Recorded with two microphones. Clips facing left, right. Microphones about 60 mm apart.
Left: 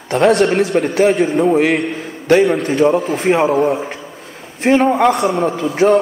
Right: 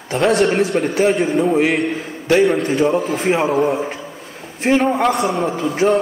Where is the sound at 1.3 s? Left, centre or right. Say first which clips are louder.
Left 2 dB; centre.